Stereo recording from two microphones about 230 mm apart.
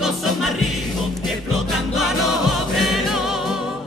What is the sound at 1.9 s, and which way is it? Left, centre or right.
Music, centre.